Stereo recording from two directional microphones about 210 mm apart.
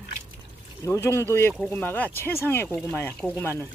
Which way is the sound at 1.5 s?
5° right (ahead or behind).